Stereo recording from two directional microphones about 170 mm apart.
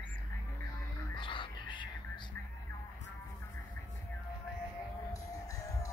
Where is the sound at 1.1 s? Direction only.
30° left (ahead or behind).